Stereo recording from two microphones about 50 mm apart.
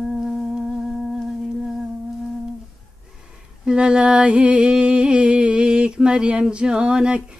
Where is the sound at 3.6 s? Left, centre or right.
Centre.